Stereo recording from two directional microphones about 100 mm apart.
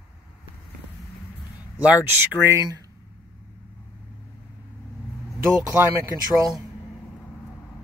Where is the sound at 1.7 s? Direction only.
15° right (ahead or behind).